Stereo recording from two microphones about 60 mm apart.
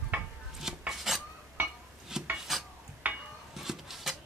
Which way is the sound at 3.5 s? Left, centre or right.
Centre.